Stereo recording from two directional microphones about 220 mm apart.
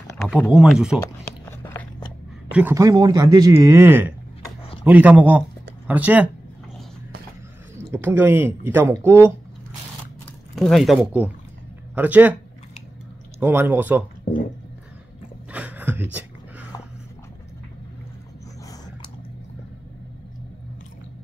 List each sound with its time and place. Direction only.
0.2 s speech: centre (ahead or behind)
1.6 s biting: 10° left (ahead or behind)
2.5 s speech: 10° right (ahead or behind)
7.9 s speech: 10° right (ahead or behind)
10.5 s speech: centre (ahead or behind)
13.4 s speech: 10° right (ahead or behind)
15.5 s a sound: 5° right (ahead or behind)